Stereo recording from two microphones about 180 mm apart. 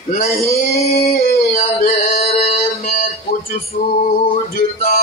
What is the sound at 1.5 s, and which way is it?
Music, 35° left (ahead or behind).